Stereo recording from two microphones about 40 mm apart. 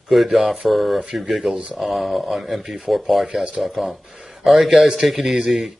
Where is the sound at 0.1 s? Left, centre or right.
Centre.